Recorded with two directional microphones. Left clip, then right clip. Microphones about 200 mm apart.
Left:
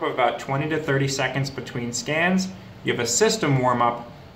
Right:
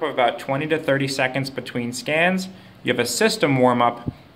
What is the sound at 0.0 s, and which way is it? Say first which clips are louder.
Speech: right 2 dB; 45° right (ahead or behind).